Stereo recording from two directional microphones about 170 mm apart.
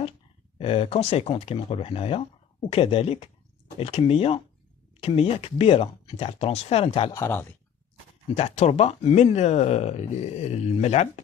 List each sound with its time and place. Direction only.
0.6 s speech: 35° left (ahead or behind)
7.2 s speech: 15° left (ahead or behind)
8.4 s speech: 40° left (ahead or behind)